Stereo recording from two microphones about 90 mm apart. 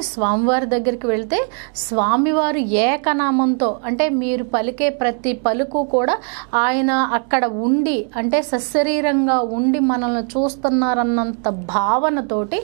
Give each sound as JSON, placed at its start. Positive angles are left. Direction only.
{"t": 0.2, "sound": "a woman's voice", "side_deg": -15}